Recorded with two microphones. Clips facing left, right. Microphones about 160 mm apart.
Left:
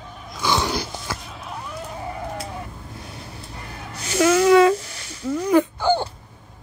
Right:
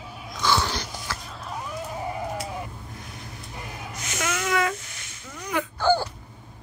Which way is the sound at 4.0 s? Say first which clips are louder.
Left 13 dB; 35° left (ahead or behind).